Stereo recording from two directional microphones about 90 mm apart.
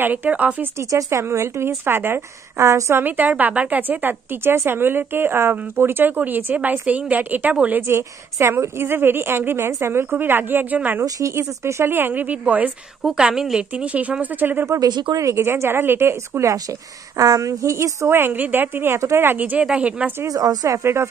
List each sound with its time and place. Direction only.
0.0 s speech: 20° right (ahead or behind)
0.7 s a woman's voice: 35° right (ahead or behind); by 7.8 s 15° right (ahead or behind)
7.8 s a woman's voice: 30° right (ahead or behind)
11.1 s a woman's voice: 40° right (ahead or behind); by 12.7 s 15° right (ahead or behind)
13.0 s speech: 5° right (ahead or behind)
14.7 s speech: 50° right (ahead or behind)
15.1 s a woman's voice: 35° right (ahead or behind); by 20.1 s 15° right (ahead or behind)
20.2 s speech: 45° right (ahead or behind)